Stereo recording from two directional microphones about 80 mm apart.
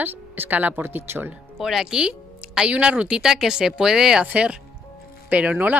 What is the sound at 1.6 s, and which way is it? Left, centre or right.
A woman's voice, centre.